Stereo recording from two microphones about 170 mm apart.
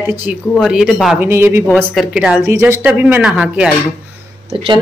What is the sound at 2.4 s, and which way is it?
A man's voice, 15° right (ahead or behind).